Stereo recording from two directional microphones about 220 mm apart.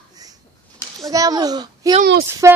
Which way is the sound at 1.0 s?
15° right (ahead or behind).